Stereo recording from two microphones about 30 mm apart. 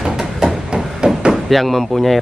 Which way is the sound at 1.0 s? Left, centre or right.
Right.